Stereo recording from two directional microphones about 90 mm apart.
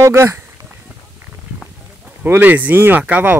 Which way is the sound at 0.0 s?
30° right (ahead or behind).